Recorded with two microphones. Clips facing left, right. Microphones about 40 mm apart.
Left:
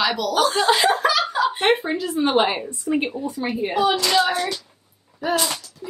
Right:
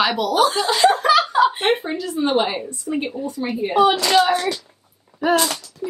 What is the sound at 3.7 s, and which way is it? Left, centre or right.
Speech, centre.